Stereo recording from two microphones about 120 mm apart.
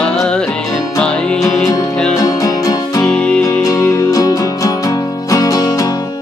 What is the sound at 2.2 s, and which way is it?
Music, 30° left (ahead or behind).